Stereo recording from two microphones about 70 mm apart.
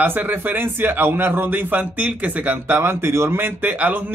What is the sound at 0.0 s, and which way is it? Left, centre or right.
A man's voice, right.